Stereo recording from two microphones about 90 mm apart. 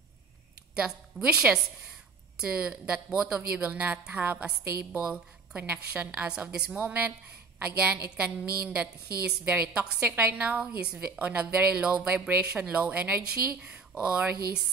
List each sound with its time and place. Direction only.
0.7 s a woman's voice: 10° right (ahead or behind)
6.8 s a woman's voice: 20° right (ahead or behind)